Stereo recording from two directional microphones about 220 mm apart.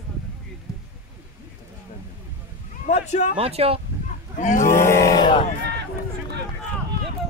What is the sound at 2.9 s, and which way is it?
Speech, 30° left (ahead or behind).